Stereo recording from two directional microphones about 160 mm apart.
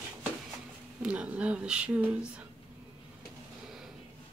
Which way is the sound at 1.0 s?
5° right (ahead or behind).